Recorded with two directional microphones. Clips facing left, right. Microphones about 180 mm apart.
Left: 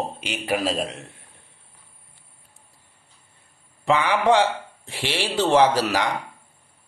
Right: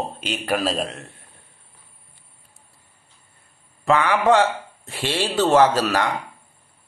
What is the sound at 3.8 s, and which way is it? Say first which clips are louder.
Speech: right 2 dB; 15° left (ahead or behind).